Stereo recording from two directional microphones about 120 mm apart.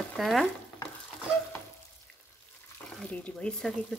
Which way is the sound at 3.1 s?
10° left (ahead or behind).